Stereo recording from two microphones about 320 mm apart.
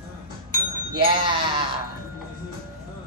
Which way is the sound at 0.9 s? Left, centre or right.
Centre.